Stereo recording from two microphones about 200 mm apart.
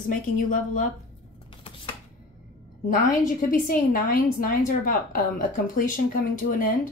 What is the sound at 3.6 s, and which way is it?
A woman's voice, 45° left (ahead or behind).